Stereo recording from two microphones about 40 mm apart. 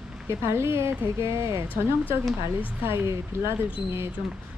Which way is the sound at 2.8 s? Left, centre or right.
Right.